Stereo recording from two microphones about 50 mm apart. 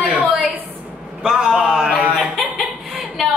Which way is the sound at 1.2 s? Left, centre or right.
Centre.